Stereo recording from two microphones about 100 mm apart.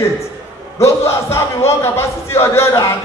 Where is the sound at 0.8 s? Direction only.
25° left (ahead or behind).